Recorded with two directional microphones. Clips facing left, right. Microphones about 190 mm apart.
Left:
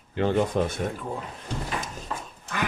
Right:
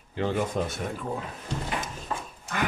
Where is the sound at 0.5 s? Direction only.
65° left (ahead or behind).